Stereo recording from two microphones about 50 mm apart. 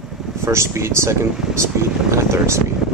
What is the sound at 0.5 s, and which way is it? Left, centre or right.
Speech, right.